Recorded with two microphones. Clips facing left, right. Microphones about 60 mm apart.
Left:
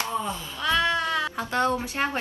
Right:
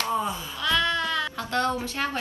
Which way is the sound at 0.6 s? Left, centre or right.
Left.